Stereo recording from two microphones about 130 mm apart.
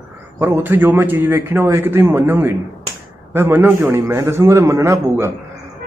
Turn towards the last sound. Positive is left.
turn(degrees=-20)  # may be behind; listen again after turning